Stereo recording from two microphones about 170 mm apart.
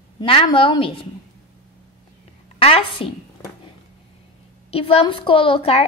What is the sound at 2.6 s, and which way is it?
Speech, 35° left (ahead or behind).